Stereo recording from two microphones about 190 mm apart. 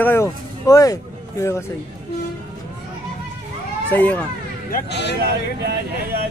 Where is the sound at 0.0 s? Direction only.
15° left (ahead or behind).